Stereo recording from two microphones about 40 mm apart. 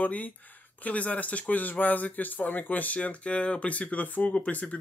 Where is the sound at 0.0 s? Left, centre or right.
Left.